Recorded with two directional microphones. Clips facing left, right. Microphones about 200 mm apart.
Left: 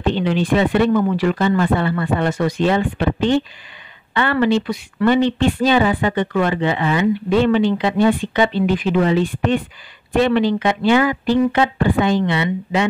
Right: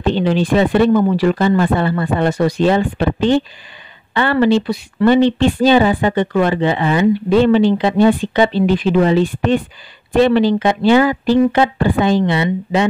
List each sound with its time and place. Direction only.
0.0 s speech: 35° right (ahead or behind)